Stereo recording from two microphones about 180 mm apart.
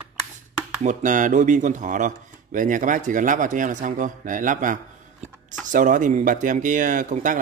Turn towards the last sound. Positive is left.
turn(degrees=-45)  # may be behind; listen again after turning